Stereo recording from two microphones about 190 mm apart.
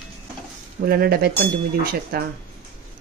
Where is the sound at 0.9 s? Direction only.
55° right (ahead or behind).